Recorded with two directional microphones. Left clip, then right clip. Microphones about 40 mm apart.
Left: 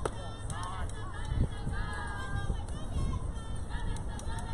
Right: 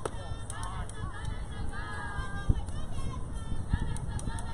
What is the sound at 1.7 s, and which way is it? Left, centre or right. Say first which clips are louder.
Music: right 1 dB; right.